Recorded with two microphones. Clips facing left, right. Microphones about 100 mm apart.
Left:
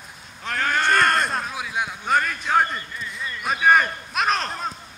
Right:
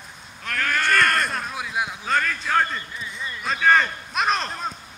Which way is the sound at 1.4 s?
Centre (ahead or behind).